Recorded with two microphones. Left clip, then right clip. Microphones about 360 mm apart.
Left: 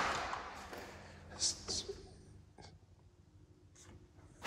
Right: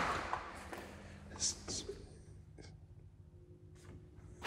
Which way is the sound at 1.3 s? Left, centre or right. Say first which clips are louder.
Left 2 dB; centre.